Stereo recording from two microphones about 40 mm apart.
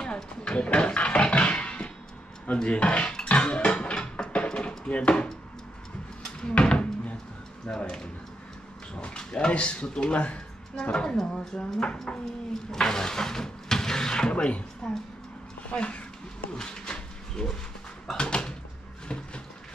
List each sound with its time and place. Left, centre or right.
0.0 s a sound: left
2.4 s speech: left
3.3 s music: left
4.5 s chop: left
6.5 s drawer open or close: left
7.7 s speech: left
11.1 s speech: centre
14.3 s speech: left
14.8 s speech: centre
15.7 s speech: left
16.5 s bee: centre
18.1 s door: left